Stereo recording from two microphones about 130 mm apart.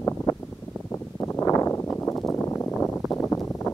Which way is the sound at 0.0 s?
25° left (ahead or behind).